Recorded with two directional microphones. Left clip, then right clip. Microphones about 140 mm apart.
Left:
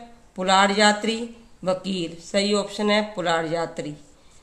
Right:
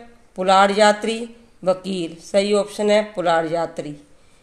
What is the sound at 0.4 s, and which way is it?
Speech, 35° right (ahead or behind).